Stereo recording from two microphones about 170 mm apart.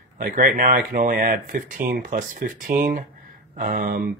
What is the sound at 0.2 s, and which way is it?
Speech, 55° right (ahead or behind).